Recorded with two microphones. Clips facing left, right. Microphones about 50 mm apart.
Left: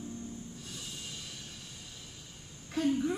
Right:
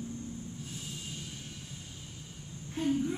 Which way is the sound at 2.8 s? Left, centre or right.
Left.